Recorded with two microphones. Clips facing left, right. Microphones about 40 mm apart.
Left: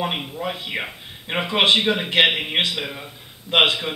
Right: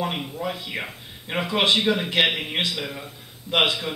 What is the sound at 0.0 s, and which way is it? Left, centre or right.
Speech, left.